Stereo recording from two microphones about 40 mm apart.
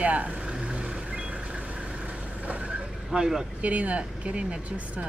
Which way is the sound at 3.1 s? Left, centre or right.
Centre.